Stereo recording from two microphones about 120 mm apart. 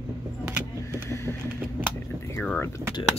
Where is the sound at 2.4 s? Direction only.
15° left (ahead or behind).